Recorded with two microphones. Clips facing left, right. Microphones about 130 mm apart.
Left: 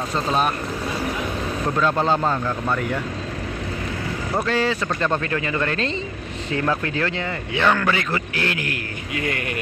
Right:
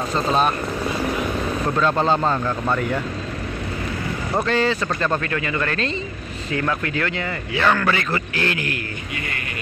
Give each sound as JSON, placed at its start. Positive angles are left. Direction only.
{"t": 1.8, "sound": "a man's voice", "side_deg": 10}
{"t": 4.5, "sound": "a man's voice", "side_deg": 10}
{"t": 5.2, "sound": "speech", "side_deg": 25}
{"t": 7.6, "sound": "a man's voice", "side_deg": 15}